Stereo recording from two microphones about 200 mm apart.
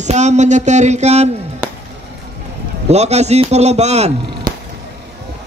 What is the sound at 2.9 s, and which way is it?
Speech, 35° right (ahead or behind).